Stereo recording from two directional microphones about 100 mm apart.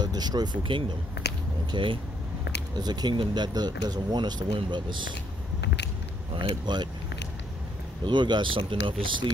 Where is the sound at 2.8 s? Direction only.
45° right (ahead or behind).